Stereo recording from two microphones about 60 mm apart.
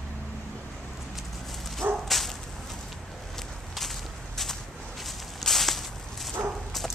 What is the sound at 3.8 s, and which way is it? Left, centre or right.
Whip, centre.